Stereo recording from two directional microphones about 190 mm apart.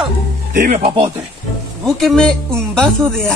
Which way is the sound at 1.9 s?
Centre (ahead or behind).